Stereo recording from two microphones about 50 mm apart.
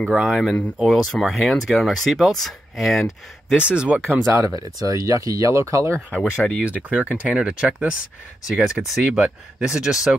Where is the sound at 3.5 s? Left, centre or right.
Right.